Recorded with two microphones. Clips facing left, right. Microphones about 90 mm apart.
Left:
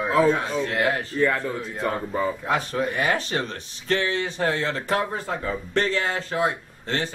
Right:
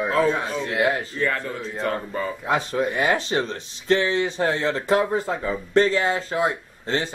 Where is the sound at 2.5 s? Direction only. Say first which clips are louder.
Right 2 dB; 25° right (ahead or behind).